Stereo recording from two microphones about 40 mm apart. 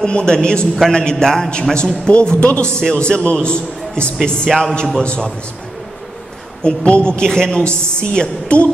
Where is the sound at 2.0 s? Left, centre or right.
Left.